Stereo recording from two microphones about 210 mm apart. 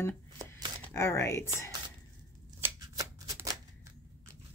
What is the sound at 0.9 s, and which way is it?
Speech, 15° left (ahead or behind).